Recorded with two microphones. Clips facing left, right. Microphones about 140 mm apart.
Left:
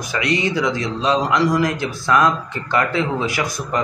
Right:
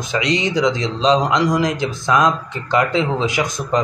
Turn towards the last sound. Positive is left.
turn(degrees=-20)  # may be behind; listen again after turning